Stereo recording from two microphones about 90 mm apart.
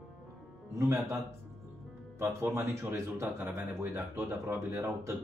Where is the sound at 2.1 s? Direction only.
30° right (ahead or behind).